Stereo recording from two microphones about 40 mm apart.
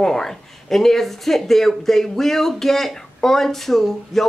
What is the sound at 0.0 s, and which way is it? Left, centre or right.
Speech, centre.